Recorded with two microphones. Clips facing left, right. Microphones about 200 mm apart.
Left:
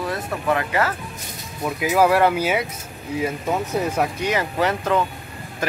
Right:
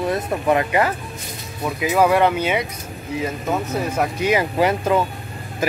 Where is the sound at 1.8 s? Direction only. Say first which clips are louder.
Right 1 dB; 5° left (ahead or behind).